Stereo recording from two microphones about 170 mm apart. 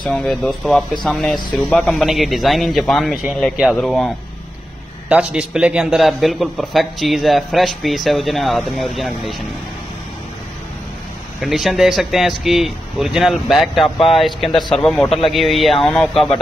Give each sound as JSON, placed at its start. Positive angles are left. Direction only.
{"t": 0.1, "sound": "a man's voice", "side_deg": 0}
{"t": 5.1, "sound": "a man's voice", "side_deg": -5}
{"t": 11.4, "sound": "a man's voice", "side_deg": 0}
{"t": 13.8, "sound": "speech", "side_deg": 30}
{"t": 14.1, "sound": "a man's voice", "side_deg": 0}